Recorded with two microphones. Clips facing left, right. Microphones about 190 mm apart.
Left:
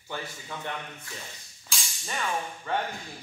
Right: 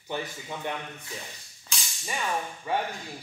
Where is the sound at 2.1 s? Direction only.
10° right (ahead or behind).